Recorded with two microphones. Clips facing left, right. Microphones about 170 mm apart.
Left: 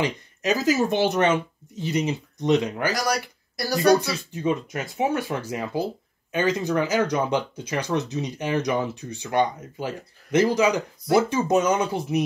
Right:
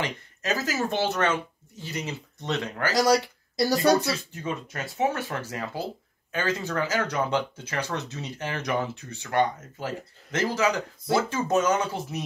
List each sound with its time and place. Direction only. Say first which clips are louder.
0.0 s speech: left 6 dB; 15° left (ahead or behind)
2.9 s speech: right 4 dB; 25° right (ahead or behind)
4.4 s speech: left 7 dB; 15° left (ahead or behind)